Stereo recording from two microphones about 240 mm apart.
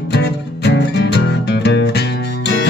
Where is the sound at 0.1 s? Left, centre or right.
Left.